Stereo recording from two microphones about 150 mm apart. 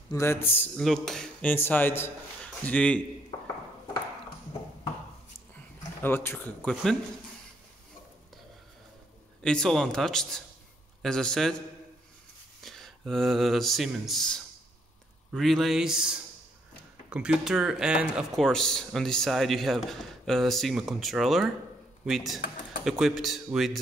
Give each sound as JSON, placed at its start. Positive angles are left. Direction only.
{"t": 0.1, "sound": "speech", "side_deg": 15}
{"t": 0.7, "sound": "speech", "side_deg": 5}
{"t": 6.0, "sound": "speech", "side_deg": 15}
{"t": 9.4, "sound": "speech", "side_deg": 5}
{"t": 12.6, "sound": "speech", "side_deg": 0}